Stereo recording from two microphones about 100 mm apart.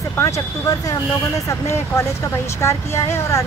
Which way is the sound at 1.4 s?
30° left (ahead or behind).